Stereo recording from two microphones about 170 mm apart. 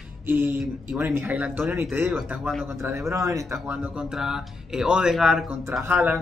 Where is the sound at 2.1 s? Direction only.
Centre (ahead or behind).